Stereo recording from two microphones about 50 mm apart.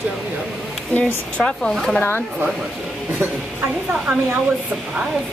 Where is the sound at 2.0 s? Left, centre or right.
Left.